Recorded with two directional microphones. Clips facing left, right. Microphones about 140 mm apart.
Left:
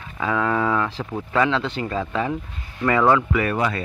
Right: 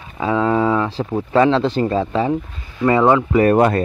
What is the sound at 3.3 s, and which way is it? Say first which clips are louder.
Speech: right 9 dB; 40° right (ahead or behind).